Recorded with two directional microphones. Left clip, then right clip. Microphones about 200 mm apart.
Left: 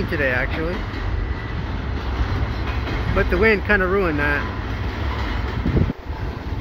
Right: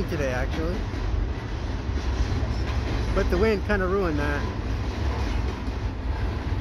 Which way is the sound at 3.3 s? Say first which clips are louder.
Left 7 dB; centre (ahead or behind).